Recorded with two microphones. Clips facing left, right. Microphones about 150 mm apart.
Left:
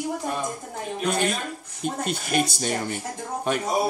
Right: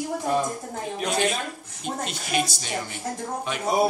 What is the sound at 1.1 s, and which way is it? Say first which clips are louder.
A man's voice: even; 50° left (ahead or behind).